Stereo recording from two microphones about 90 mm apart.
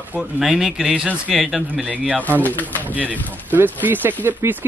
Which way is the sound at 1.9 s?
15° right (ahead or behind).